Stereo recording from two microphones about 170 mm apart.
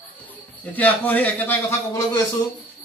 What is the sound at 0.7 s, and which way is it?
Speech, 10° left (ahead or behind).